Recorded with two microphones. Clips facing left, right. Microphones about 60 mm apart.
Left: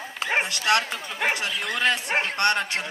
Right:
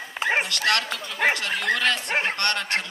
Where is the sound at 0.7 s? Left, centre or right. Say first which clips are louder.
Left 2 dB; left.